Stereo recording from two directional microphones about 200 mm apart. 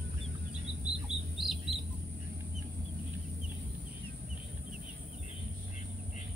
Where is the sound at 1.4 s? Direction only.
Centre (ahead or behind).